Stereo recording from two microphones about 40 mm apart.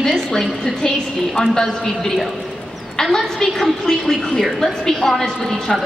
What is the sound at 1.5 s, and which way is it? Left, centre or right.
A woman's voice, centre.